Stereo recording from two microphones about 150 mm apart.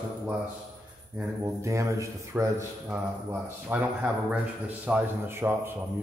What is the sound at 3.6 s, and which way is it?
Speech, 10° right (ahead or behind).